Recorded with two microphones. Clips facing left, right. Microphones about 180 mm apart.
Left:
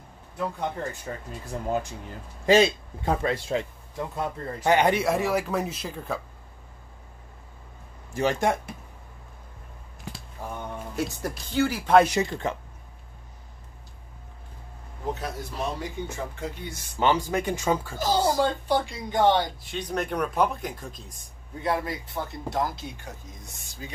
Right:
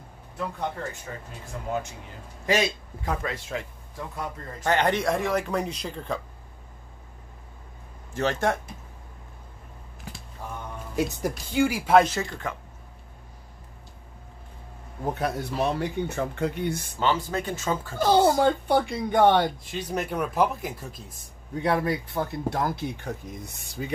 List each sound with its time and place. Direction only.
1.1 s a man's voice: 30° left (ahead or behind)
4.6 s speech: 10° left (ahead or behind)
8.1 s speech: 10° left (ahead or behind)
11.0 s speech: 15° right (ahead or behind)
12.0 s a man's voice: 15° left (ahead or behind)
15.1 s speech: 65° right (ahead or behind)
17.0 s speech: 15° left (ahead or behind)
17.9 s speech: 60° right (ahead or behind)
19.6 s speech: 5° right (ahead or behind)
21.8 s speech: 65° right (ahead or behind)